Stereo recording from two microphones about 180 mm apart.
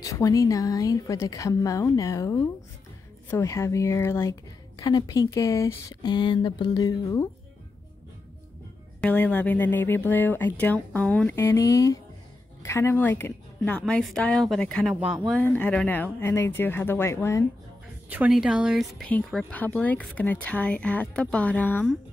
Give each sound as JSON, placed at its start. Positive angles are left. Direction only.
{"t": 0.0, "sound": "a woman's voice", "side_deg": 20}
{"t": 9.0, "sound": "a woman's voice", "side_deg": 10}
{"t": 15.0, "sound": "speech", "side_deg": -5}
{"t": 15.3, "sound": "a woman's voice", "side_deg": 10}
{"t": 18.1, "sound": "a woman's voice", "side_deg": -5}